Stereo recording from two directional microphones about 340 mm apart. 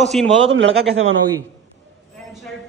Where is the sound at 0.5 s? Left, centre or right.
Right.